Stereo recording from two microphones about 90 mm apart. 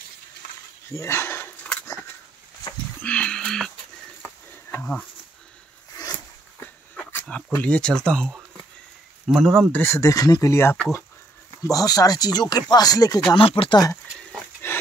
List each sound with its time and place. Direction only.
0.9 s a sound: 30° left (ahead or behind)
3.0 s music: 15° left (ahead or behind)
4.2 s a sound: 25° left (ahead or behind)
6.6 s dog: 25° left (ahead or behind)
7.6 s speech: 10° left (ahead or behind)
9.7 s speech: 20° left (ahead or behind)
9.9 s speech: 40° left (ahead or behind)
10.5 s speech: 30° left (ahead or behind)
11.7 s speech: 40° left (ahead or behind)
13.4 s speech: 85° left
14.6 s dog: 25° left (ahead or behind)